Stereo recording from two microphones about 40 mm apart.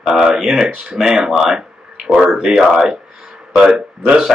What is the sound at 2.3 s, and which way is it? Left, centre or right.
Speech, centre.